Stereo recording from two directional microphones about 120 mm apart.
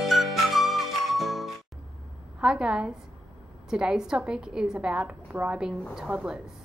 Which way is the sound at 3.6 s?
5° right (ahead or behind).